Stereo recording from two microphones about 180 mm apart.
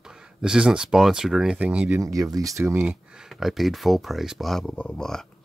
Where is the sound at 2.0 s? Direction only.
20° right (ahead or behind).